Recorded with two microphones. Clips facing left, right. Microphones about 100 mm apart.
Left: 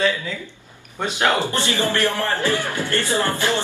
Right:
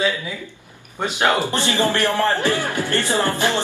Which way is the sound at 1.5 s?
20° right (ahead or behind).